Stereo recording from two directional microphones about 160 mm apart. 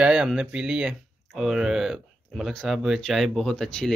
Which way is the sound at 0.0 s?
5° right (ahead or behind).